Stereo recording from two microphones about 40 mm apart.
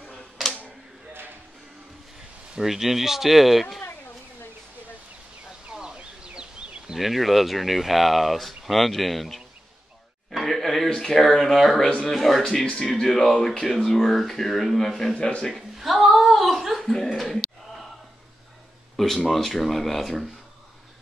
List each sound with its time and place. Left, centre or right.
2.6 s speech: centre
5.7 s a sound: centre
5.9 s chicken: right
6.9 s speech: centre
10.4 s music: centre
11.0 s speech: centre
12.7 s speech: centre
13.1 s speech: centre
15.1 s a man's voice: left
15.8 s a sound: centre
16.8 s a sound: centre
19.2 s speech: centre